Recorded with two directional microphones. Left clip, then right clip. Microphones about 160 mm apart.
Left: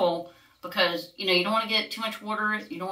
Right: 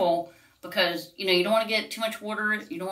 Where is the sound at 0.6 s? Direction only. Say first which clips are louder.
Even; 15° left (ahead or behind).